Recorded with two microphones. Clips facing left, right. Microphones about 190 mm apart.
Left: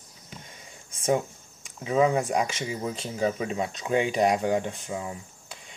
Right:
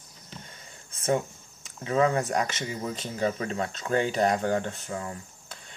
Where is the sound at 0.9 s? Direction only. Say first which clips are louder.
Left 1 dB; 15° left (ahead or behind).